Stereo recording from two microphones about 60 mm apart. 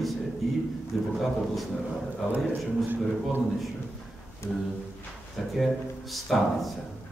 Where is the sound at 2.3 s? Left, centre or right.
Right.